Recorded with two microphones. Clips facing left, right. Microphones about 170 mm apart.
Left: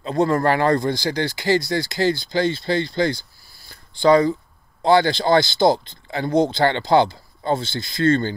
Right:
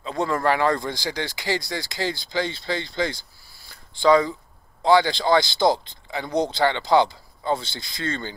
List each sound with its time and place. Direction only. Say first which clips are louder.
0.0 s speech: left 5 dB; 45° left (ahead or behind)